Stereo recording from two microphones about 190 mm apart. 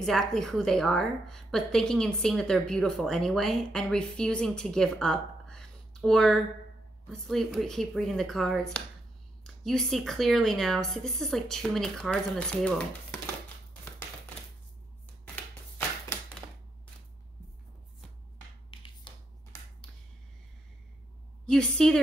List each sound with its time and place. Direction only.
0.0 s a woman's voice: centre (ahead or behind)
18.7 s finger snapping: 25° left (ahead or behind)
19.5 s finger snapping: 15° left (ahead or behind)
21.5 s a woman's voice: 5° left (ahead or behind)